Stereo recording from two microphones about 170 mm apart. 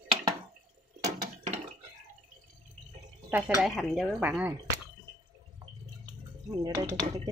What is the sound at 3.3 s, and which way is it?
Speech, 10° right (ahead or behind).